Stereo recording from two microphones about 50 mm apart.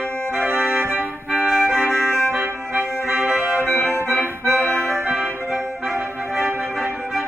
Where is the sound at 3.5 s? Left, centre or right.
Right.